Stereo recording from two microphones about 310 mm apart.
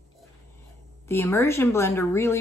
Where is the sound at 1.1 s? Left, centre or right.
Centre.